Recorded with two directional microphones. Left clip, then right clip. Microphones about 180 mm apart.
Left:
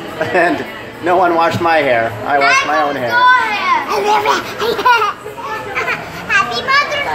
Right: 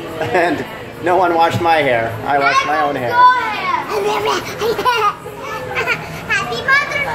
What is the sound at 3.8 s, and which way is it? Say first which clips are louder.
Speech: left 4 dB; 20° left (ahead or behind).